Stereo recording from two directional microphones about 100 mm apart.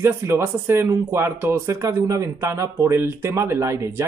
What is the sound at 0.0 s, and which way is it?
Speech, 25° right (ahead or behind).